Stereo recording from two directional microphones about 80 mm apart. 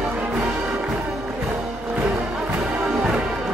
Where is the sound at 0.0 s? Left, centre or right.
Centre.